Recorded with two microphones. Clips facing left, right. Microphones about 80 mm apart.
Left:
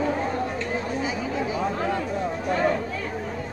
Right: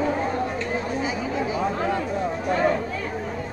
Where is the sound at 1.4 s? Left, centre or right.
Right.